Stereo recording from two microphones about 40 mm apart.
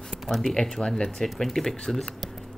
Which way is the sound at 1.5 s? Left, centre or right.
Centre.